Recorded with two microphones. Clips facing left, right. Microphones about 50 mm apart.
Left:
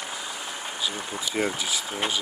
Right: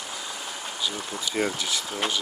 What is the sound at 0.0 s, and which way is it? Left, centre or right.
Vehicle, centre.